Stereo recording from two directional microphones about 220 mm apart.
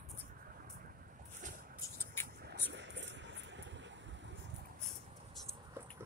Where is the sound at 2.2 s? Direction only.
50° right (ahead or behind).